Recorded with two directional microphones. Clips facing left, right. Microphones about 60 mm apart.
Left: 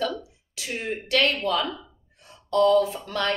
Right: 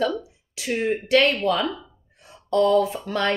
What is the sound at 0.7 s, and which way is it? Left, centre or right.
Speech, right.